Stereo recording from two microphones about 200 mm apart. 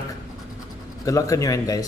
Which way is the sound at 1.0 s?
15° left (ahead or behind).